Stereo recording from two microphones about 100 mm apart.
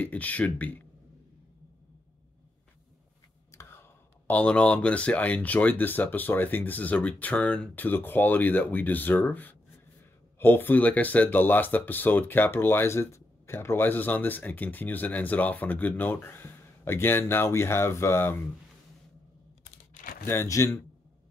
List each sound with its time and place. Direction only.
0.0 s speech: 15° left (ahead or behind)
3.5 s a sound: 30° left (ahead or behind)
4.3 s speech: 10° left (ahead or behind)
20.2 s speech: 25° left (ahead or behind)